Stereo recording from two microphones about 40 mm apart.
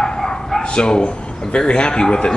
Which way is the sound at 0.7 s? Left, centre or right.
Left.